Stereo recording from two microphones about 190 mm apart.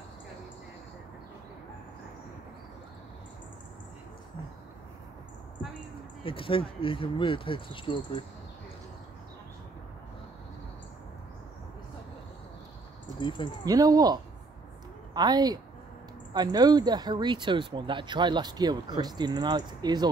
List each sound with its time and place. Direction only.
6.2 s speech: 30° left (ahead or behind)
13.2 s speech: 25° left (ahead or behind)
13.7 s speech: 20° right (ahead or behind)